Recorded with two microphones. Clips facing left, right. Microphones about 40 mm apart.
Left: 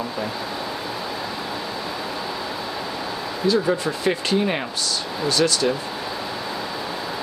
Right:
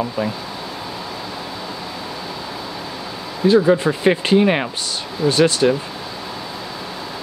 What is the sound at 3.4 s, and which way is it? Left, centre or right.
Speech, right.